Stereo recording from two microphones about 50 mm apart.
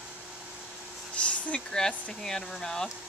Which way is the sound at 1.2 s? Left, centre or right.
Left.